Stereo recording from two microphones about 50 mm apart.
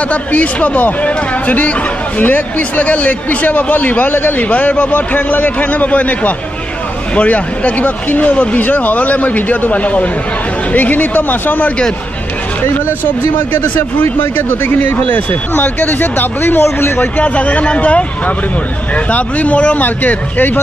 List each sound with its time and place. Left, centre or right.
0.1 s speech: left
14.3 s speech: left
15.0 s speech: left
17.0 s speech: left